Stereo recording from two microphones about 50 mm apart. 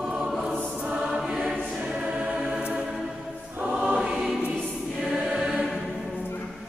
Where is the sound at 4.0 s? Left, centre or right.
Centre.